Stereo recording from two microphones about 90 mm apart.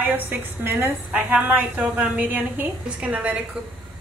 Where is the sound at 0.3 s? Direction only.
25° right (ahead or behind).